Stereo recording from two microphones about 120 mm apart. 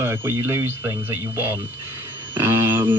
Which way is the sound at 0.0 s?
20° right (ahead or behind).